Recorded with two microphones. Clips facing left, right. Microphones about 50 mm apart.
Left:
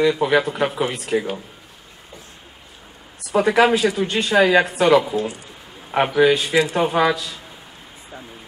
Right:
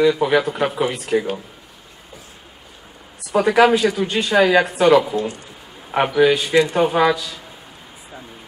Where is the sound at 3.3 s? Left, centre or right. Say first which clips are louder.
Right 2 dB; centre.